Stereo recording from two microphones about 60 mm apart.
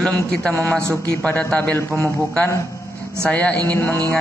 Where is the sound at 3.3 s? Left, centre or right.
Left.